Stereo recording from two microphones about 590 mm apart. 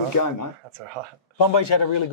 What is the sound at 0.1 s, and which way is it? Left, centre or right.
Speech, left.